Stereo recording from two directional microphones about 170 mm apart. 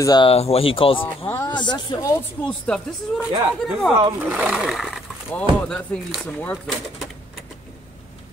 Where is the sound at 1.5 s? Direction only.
25° left (ahead or behind).